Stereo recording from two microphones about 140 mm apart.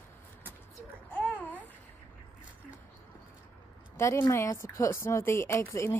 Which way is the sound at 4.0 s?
20° left (ahead or behind).